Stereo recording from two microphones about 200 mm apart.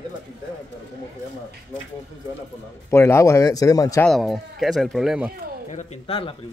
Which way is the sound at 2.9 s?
15° left (ahead or behind).